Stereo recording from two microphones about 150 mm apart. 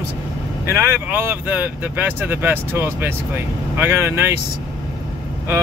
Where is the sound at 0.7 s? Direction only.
15° right (ahead or behind).